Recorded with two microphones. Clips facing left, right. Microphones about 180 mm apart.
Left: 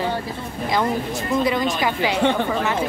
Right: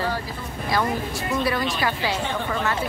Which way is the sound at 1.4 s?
20° left (ahead or behind).